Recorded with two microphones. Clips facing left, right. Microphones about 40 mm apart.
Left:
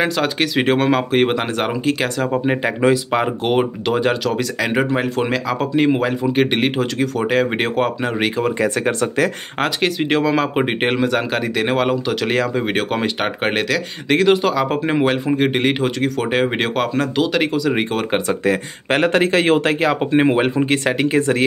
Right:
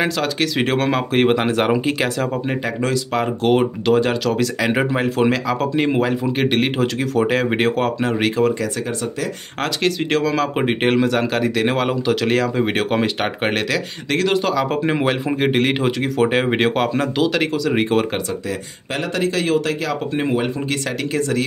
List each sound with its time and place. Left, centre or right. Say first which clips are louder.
0.2 s speech: left 2 dB; centre
2.3 s speech: left 4 dB; centre
8.8 s speech: left 6 dB; left
9.6 s speech: left 2 dB; centre
18.5 s speech: left 7 dB; left